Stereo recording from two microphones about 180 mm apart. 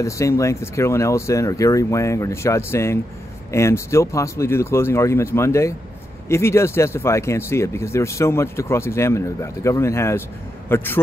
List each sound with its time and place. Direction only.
0.0 s speech: 15° left (ahead or behind)